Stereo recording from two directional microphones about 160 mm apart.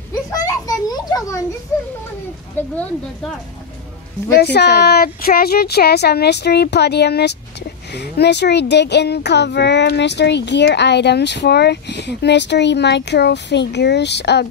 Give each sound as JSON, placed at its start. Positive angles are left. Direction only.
{"t": 0.1, "sound": "a sound", "side_deg": 20}
{"t": 2.6, "sound": "speech", "side_deg": 10}
{"t": 4.4, "sound": "a child's voice", "side_deg": 90}